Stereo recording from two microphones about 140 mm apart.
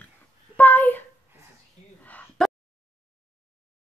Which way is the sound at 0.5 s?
15° left (ahead or behind).